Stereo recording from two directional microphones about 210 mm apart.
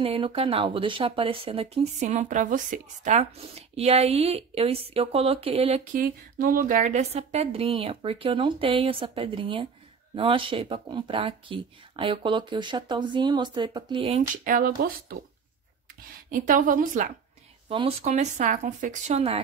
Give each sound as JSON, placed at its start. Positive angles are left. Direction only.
{"t": 0.0, "sound": "speech", "side_deg": -25}
{"t": 5.9, "sound": "speech", "side_deg": -40}
{"t": 14.3, "sound": "speech", "side_deg": -40}
{"t": 16.3, "sound": "speech", "side_deg": -40}
{"t": 17.6, "sound": "speech", "side_deg": -25}